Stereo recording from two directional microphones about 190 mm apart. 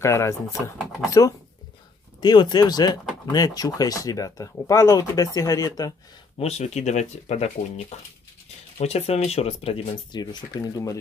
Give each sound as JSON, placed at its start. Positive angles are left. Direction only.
{"t": 0.0, "sound": "speech", "side_deg": 15}
{"t": 2.1, "sound": "speech", "side_deg": 25}
{"t": 6.4, "sound": "speech", "side_deg": 35}
{"t": 10.2, "sound": "speech", "side_deg": 20}